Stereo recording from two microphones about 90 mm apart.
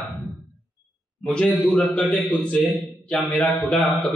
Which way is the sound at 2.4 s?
15° left (ahead or behind).